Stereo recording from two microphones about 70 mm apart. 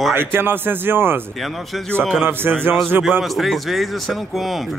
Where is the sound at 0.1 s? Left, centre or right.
Right.